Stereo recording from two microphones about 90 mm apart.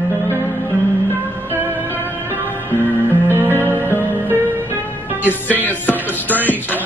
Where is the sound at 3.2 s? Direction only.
25° right (ahead or behind).